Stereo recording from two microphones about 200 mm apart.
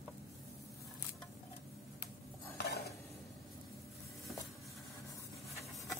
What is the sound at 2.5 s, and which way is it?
Dishes, 55° left (ahead or behind).